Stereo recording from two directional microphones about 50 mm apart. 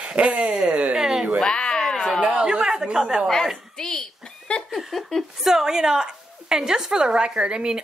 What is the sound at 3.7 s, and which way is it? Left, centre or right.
Speech, centre.